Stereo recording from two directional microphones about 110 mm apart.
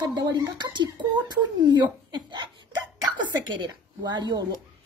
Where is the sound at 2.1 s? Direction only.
40° right (ahead or behind).